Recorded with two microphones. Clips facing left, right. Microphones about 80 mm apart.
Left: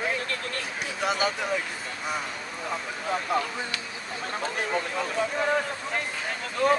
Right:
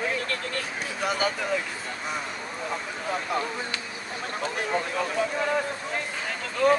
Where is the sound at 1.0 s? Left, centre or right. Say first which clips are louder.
Even; centre.